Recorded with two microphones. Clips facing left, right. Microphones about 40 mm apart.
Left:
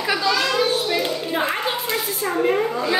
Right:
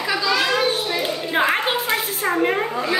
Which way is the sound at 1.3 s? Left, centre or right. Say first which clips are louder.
Right 3 dB; right.